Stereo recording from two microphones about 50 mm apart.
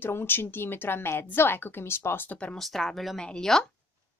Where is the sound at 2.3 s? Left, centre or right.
Left.